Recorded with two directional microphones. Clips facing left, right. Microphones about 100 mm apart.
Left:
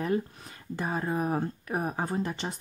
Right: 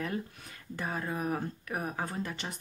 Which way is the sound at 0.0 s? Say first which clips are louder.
Left 7 dB; 30° left (ahead or behind).